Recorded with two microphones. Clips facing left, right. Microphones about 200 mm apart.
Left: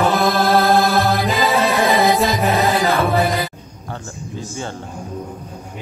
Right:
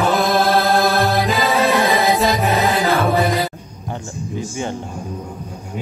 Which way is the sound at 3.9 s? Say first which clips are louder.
Right 4 dB; 15° right (ahead or behind).